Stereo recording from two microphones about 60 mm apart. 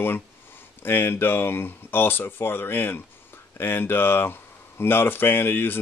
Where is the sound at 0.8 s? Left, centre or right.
Left.